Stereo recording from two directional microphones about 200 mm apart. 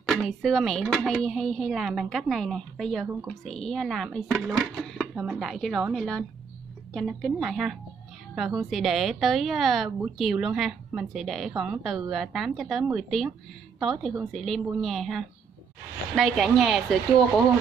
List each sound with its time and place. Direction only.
0.1 s a woman's voice: centre (ahead or behind)